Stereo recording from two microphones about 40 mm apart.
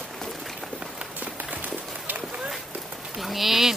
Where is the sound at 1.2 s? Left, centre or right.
Right.